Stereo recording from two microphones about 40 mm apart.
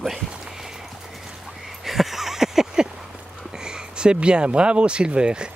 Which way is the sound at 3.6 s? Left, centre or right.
Centre.